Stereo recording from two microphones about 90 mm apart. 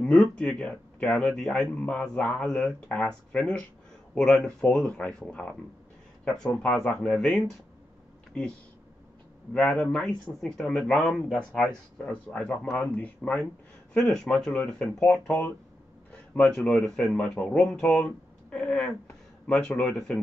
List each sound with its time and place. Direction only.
0.0 s speech: 10° left (ahead or behind)
9.5 s speech: 15° left (ahead or behind)
14.2 s speech: 5° left (ahead or behind)